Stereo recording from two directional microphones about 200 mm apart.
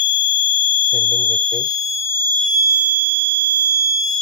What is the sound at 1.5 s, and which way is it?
Fire alarm, 20° left (ahead or behind).